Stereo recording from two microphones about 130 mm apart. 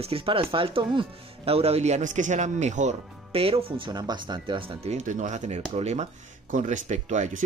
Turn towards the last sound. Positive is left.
turn(degrees=-65)  # may be behind; listen again after turning